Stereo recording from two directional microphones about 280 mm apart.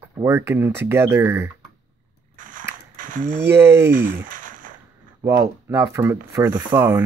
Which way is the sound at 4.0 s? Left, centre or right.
Right.